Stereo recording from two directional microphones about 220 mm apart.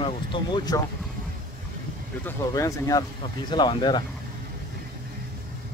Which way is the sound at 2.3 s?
15° left (ahead or behind).